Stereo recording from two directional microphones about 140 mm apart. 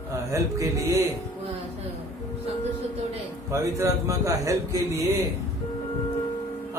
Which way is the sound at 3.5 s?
20° right (ahead or behind).